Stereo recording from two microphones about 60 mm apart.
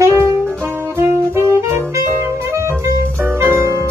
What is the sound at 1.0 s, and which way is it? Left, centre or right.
Saxophone, right.